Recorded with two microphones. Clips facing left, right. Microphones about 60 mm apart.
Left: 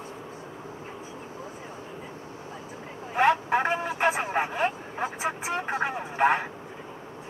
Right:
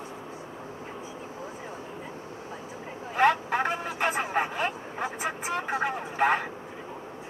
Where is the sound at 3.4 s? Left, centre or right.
Left.